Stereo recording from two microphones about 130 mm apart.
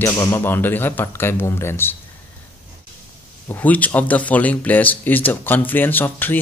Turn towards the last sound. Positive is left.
turn(degrees=15)  # may be behind; listen again after turning